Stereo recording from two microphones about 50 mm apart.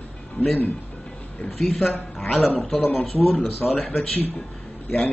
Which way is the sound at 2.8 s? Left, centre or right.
Left.